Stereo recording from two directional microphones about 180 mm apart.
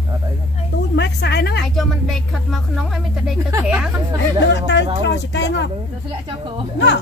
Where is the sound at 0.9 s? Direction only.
70° left (ahead or behind).